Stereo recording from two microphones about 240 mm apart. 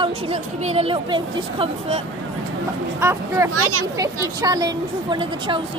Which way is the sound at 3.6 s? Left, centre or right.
Right.